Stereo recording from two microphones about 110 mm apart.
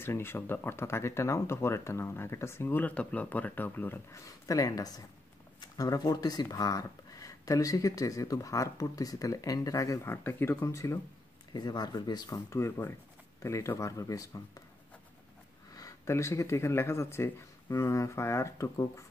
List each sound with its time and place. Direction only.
0.0 s speech: 20° left (ahead or behind)
11.5 s speech: 40° left (ahead or behind)
15.7 s speech: 30° left (ahead or behind)